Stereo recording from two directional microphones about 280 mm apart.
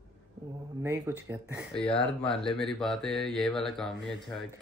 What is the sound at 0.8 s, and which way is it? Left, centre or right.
Speech, centre.